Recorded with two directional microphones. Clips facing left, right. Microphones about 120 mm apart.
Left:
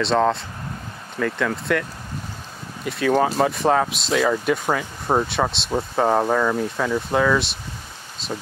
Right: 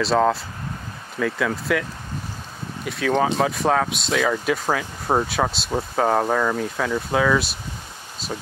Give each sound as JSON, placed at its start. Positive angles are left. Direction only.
{"t": 0.0, "sound": "speech", "side_deg": 0}